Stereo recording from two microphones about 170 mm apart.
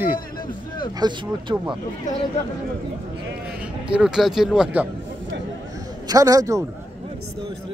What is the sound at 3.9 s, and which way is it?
Speech, 5° right (ahead or behind).